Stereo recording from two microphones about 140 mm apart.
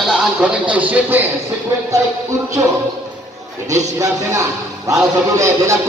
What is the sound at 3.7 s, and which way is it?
Music, 20° right (ahead or behind).